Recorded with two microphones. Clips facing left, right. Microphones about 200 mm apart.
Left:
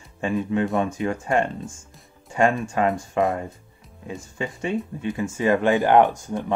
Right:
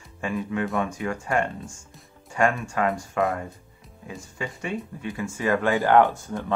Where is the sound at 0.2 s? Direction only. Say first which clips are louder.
Left 4 dB; 25° left (ahead or behind).